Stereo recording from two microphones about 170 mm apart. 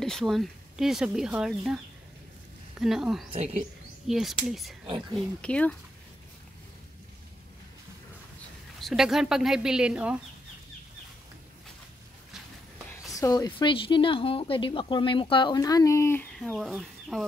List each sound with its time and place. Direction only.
0.0 s speech: centre (ahead or behind)
2.8 s speech: centre (ahead or behind)
3.3 s speech: 40° right (ahead or behind)
4.1 s speech: centre (ahead or behind)
4.8 s speech: 30° right (ahead or behind)
5.4 s speech: 5° left (ahead or behind)
8.8 s speech: centre (ahead or behind)
13.1 s speech: 20° left (ahead or behind)
16.3 s speech: centre (ahead or behind)